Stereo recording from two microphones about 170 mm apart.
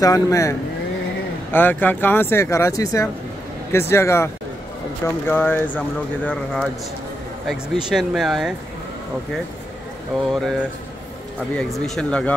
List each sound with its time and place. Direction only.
0.0 s speech: 20° left (ahead or behind); by 8.5 s centre (ahead or behind)
10.3 s speech: centre (ahead or behind)